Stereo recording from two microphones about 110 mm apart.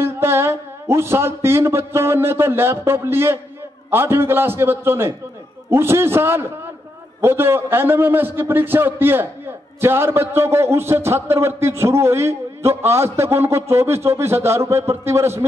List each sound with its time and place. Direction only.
0.0 s a man's voice: 25° right (ahead or behind)